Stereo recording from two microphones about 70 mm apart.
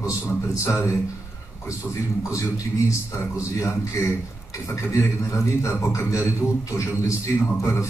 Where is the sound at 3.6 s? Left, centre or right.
Left.